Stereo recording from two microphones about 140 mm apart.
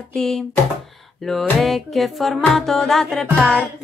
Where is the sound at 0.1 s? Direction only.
5° left (ahead or behind).